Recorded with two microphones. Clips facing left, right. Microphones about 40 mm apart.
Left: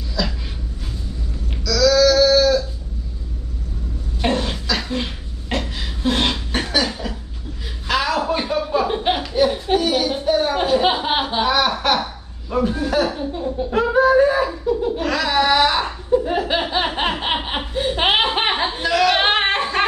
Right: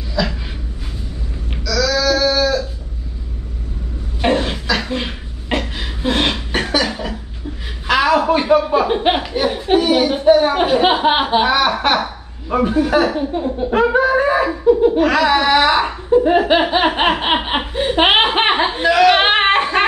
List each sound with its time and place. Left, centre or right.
0.2 s dog: centre
1.5 s sheep: centre
4.2 s a sound: right
8.2 s chuckle: right
12.0 s speech: right